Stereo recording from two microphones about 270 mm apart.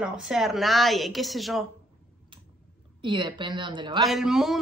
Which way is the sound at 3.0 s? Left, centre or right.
Centre.